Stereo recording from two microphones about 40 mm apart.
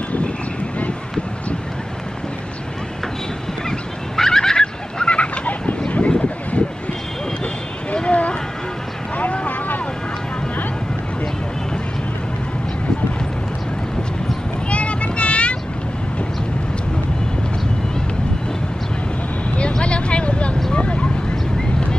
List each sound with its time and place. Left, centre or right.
4.2 s fowl: centre; by 5.8 s left
5.9 s vehicle: left
7.9 s a sound: left
9.1 s vehicle: left
14.7 s vehicle: left
19.8 s a sound: left
20.7 s vehicle: left